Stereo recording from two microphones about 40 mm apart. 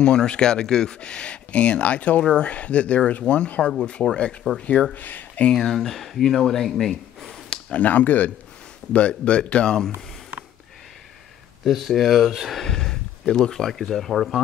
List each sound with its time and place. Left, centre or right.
0.0 s speech: left
4.9 s speech: left
5.6 s speech: centre
7.7 s speech: left
8.9 s speech: left
11.6 s speech: centre
12.3 s speech: centre
12.5 s speech: centre